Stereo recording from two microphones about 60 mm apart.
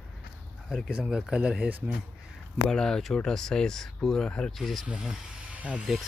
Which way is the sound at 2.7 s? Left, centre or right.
Centre.